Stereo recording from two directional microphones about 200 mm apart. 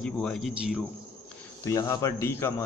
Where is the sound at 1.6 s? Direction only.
15° left (ahead or behind).